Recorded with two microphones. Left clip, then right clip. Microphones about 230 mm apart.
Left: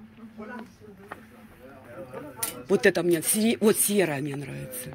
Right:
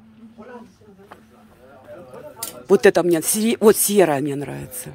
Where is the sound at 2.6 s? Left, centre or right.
Right.